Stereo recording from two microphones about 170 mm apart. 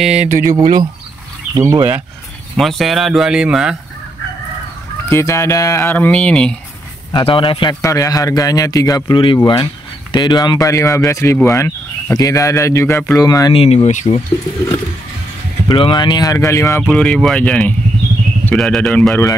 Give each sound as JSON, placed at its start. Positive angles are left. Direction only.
{"t": 0.2, "sound": "speech", "side_deg": -50}
{"t": 1.5, "sound": "speech", "side_deg": -20}
{"t": 2.5, "sound": "speech", "side_deg": 0}
{"t": 5.1, "sound": "speech", "side_deg": 15}
{"t": 7.2, "sound": "speech", "side_deg": 35}
{"t": 7.8, "sound": "speech", "side_deg": 20}
{"t": 13.6, "sound": "speech", "side_deg": 40}
{"t": 15.7, "sound": "speech", "side_deg": 30}
{"t": 16.9, "sound": "speech", "side_deg": 5}